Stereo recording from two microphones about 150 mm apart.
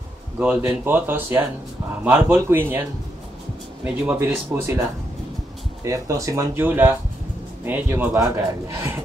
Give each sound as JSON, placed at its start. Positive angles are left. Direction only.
{"t": 0.4, "sound": "speech", "side_deg": -10}
{"t": 5.9, "sound": "speech", "side_deg": -20}